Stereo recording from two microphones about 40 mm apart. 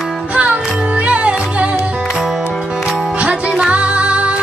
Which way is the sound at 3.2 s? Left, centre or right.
Right.